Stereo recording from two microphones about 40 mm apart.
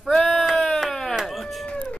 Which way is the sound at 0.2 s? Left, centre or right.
Centre.